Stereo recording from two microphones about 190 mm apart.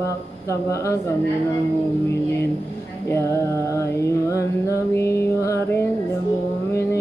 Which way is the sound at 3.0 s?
15° left (ahead or behind).